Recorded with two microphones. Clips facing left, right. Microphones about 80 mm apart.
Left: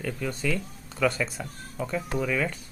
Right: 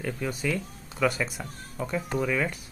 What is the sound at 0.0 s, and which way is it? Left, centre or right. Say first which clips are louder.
Speech: even; centre.